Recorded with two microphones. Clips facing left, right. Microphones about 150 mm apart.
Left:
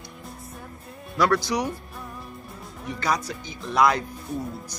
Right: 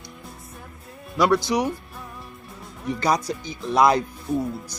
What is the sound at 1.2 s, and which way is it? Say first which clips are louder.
Speech: right 3 dB; 20° right (ahead or behind).